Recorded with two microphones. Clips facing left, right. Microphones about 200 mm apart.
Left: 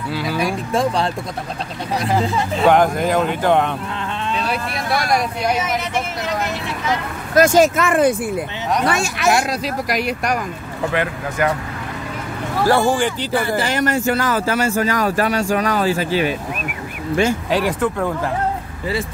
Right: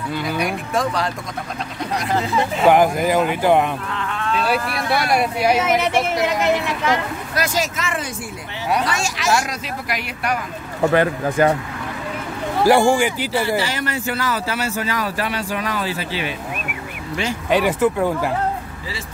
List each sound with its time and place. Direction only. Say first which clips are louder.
0.1 s speech: left 1 dB; 5° left (ahead or behind)
0.7 s speech: left 3 dB; 30° left (ahead or behind)
2.6 s speech: even; 5° right (ahead or behind)
5.1 s speech: right 3 dB; 5° right (ahead or behind)
5.6 s speech: right 4 dB; 65° right (ahead or behind)
7.3 s speech: left 11 dB; 50° left (ahead or behind)
9.5 s speech: left 5 dB; 40° left (ahead or behind)
10.9 s speech: right 5 dB; 35° right (ahead or behind)
12.6 s speech: right 2 dB; 15° right (ahead or behind)
13.6 s speech: left 5 dB; 50° left (ahead or behind)
17.5 s speech: right 2 dB; centre (ahead or behind)